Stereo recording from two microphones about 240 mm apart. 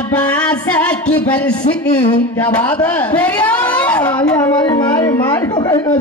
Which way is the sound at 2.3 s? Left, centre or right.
Centre.